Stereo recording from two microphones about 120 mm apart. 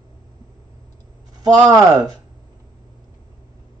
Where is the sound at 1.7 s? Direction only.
35° right (ahead or behind).